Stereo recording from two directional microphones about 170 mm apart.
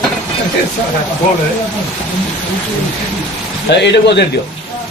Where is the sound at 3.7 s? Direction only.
90° left.